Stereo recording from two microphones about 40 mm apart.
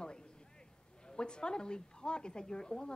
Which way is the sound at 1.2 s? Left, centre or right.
Left.